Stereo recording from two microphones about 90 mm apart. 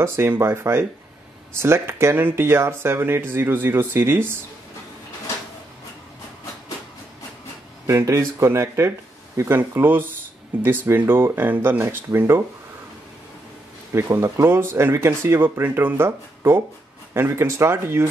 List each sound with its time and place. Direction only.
0.0 s speech: 25° right (ahead or behind)
7.8 s speech: 30° right (ahead or behind)
14.1 s speech: 30° right (ahead or behind)